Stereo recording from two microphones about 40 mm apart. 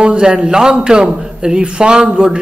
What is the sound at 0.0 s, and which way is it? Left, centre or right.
Speech, right.